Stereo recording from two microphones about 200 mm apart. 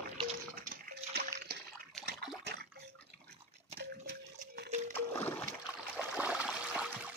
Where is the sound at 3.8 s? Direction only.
55° right (ahead or behind).